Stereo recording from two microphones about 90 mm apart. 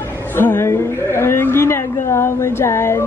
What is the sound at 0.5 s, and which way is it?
Speech, 30° left (ahead or behind).